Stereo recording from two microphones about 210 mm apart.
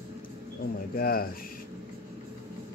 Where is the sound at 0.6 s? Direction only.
45° left (ahead or behind).